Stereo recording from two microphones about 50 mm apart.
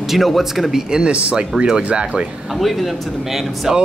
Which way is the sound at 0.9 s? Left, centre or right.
Centre.